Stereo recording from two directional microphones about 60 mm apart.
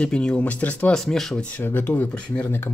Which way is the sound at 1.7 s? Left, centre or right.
Left.